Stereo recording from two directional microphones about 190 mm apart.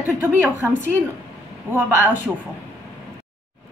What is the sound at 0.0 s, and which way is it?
A woman's voice, 10° right (ahead or behind).